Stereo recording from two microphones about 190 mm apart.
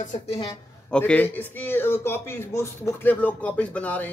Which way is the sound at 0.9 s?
5° left (ahead or behind).